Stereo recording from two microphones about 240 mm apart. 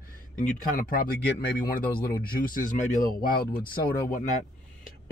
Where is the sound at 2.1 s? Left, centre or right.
Left.